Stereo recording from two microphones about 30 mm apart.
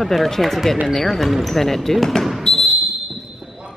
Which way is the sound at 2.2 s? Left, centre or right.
Centre.